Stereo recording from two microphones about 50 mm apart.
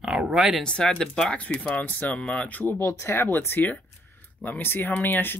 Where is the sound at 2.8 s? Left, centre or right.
Left.